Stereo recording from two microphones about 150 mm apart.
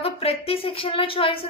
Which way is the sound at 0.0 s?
40° left (ahead or behind).